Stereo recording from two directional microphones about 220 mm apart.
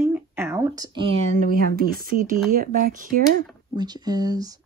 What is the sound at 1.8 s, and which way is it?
Speech, 40° right (ahead or behind).